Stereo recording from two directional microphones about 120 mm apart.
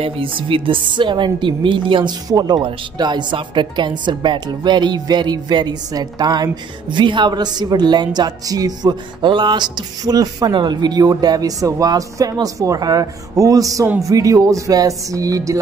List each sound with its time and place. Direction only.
0.0 s speech: 45° right (ahead or behind); by 15.6 s 30° right (ahead or behind)